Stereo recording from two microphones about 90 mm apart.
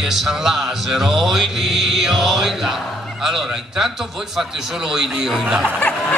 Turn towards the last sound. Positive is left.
turn(degrees=15)  # may be behind; listen again after turning